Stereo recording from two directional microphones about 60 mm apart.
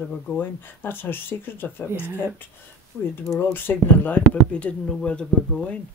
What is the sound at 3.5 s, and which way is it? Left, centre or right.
Speech, left.